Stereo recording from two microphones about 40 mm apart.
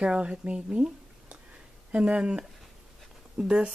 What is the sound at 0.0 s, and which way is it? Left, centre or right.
Speech, right.